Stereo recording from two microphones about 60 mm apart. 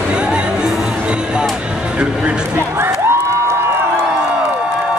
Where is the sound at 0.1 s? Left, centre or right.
Centre.